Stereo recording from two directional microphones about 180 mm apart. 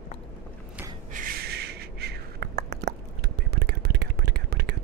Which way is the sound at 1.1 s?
55° right (ahead or behind).